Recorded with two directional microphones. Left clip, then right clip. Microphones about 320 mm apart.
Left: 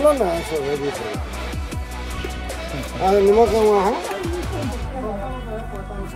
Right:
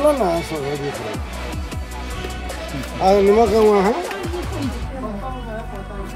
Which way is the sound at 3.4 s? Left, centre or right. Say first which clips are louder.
Right 1 dB; right.